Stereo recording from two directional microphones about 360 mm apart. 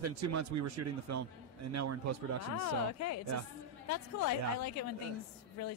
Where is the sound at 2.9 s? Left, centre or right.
Left.